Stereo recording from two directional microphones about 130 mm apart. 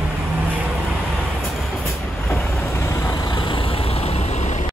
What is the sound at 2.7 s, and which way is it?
Vehicle, 20° left (ahead or behind).